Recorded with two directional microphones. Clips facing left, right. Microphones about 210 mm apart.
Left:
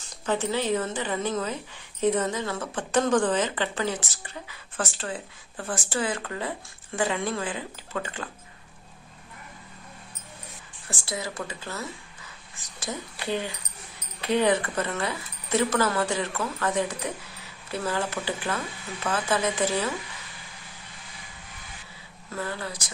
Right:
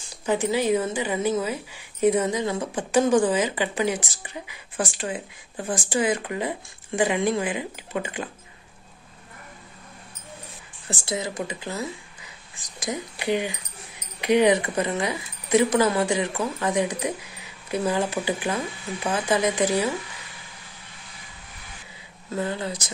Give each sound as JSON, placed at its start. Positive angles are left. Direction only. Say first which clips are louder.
{"t": 0.2, "sound": "a woman's voice", "louder": "right 4 dB", "side_deg": -10}
{"t": 10.9, "sound": "a woman's voice", "louder": "right 4 dB", "side_deg": -20}
{"t": 22.3, "sound": "speech", "louder": "right 5 dB", "side_deg": -20}